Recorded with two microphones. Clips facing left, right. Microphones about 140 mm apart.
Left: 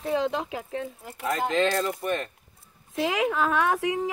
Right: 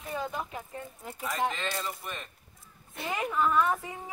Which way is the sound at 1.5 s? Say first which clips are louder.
Left 11 dB; 80° left.